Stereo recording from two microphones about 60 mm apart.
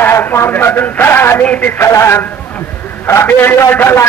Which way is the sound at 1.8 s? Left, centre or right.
Left.